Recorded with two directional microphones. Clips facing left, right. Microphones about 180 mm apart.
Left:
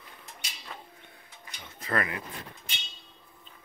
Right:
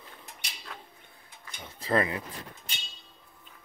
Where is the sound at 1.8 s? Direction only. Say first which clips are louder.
Right 4 dB; 25° right (ahead or behind).